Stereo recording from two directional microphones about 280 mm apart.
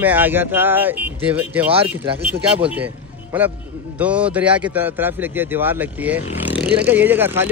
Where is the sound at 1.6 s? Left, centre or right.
Centre.